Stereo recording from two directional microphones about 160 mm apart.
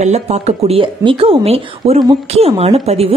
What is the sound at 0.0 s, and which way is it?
Speech, 45° right (ahead or behind).